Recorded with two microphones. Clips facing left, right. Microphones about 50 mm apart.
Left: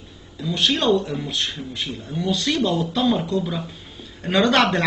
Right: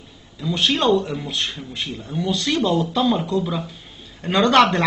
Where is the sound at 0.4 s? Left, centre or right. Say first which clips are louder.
Right 1 dB; centre.